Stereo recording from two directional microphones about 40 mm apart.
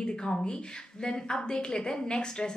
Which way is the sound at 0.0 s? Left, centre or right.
Centre.